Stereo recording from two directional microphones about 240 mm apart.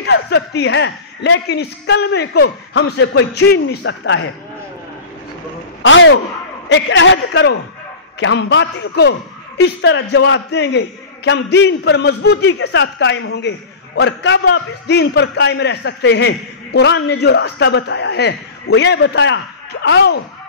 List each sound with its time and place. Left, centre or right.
0.0 s a man's voice: left
5.8 s a man's voice: left